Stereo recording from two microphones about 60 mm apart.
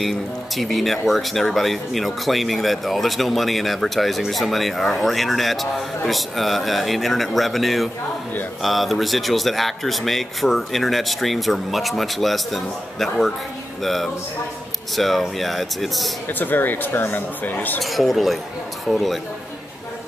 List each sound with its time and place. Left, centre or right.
0.0 s speech: centre
16.3 s speech: left
17.8 s speech: centre